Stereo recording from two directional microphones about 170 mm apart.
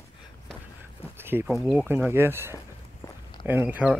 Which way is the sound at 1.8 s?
15° right (ahead or behind).